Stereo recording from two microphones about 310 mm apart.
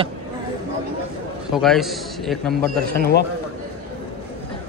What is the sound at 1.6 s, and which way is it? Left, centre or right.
A man's voice, centre.